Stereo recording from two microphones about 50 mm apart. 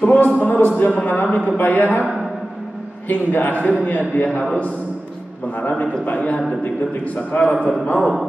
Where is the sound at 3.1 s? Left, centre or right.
Left.